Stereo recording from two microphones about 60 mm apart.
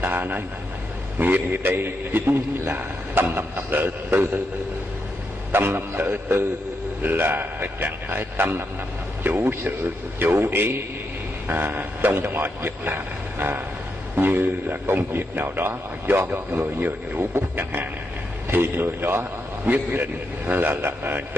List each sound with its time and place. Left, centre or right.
0.0 s vehicle: right
1.1 s a man's voice: right
5.5 s a man's voice: right
9.8 s a man's voice: right
18.5 s a man's voice: right